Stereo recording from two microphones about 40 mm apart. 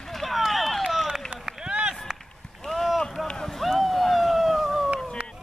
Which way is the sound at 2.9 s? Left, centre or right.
Centre.